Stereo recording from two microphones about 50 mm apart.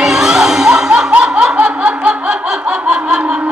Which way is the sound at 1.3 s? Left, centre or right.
Centre.